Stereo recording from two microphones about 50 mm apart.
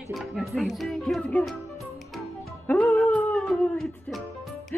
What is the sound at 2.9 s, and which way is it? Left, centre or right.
Dog, left.